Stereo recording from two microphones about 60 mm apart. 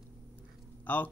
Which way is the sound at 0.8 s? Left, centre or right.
Left.